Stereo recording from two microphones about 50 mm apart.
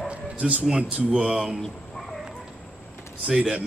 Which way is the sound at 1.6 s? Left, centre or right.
Centre.